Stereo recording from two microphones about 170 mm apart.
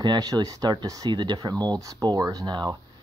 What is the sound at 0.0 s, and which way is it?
Speech, 25° right (ahead or behind).